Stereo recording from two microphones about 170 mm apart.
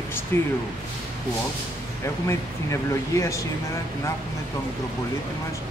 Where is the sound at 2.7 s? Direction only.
15° left (ahead or behind).